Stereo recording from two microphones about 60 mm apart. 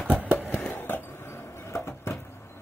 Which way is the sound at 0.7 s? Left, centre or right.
Left.